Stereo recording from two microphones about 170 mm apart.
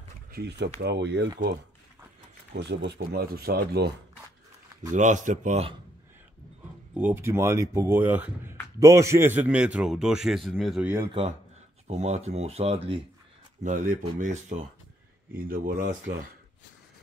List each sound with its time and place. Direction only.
0.3 s speech: 75° right (ahead or behind)
2.5 s speech: 90° right; by 3.9 s 70° right (ahead or behind)
4.9 s speech: 45° right (ahead or behind)
6.9 s a man's voice: 10° right (ahead or behind)
11.9 s speech: 40° right (ahead or behind)
13.7 s speech: 55° right (ahead or behind)